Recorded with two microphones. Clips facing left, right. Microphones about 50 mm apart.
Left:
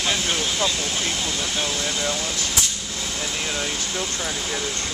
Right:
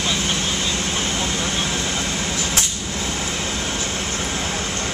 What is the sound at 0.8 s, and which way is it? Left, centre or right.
Vehicle, right.